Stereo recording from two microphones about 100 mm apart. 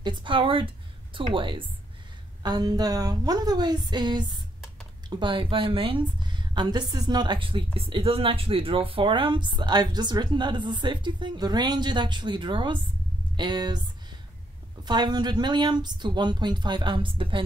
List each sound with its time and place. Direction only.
0.0 s speech: 55° right (ahead or behind)
2.4 s a woman's voice: 40° right (ahead or behind)
14.9 s a woman's voice: 45° right (ahead or behind)